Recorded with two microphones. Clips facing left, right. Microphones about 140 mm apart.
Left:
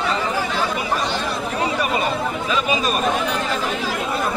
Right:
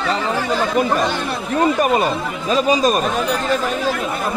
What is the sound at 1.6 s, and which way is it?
Speech, 45° right (ahead or behind).